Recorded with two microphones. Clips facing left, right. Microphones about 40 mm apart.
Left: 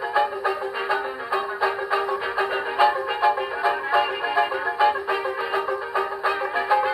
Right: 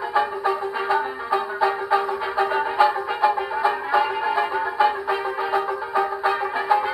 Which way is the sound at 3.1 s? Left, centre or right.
Centre.